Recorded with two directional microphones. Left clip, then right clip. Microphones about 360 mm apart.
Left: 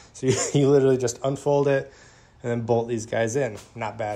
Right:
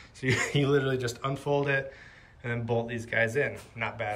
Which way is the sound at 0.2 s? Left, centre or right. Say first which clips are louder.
Left 5 dB; centre.